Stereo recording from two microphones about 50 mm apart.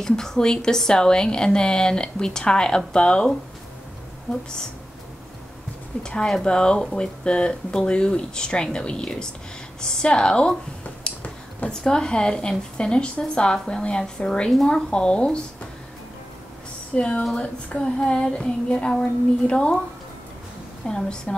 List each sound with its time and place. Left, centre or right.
0.0 s a woman's voice: centre
4.3 s a woman's voice: centre
6.0 s a woman's voice: centre
11.1 s a sound: centre
11.7 s a woman's voice: centre
14.7 s child singing: centre
16.9 s child singing: centre
20.8 s a woman's voice: centre